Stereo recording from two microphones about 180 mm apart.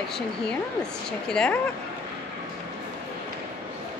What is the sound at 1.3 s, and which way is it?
Speech, 5° left (ahead or behind).